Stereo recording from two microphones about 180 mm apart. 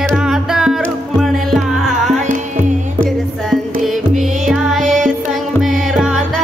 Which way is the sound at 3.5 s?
Centre (ahead or behind).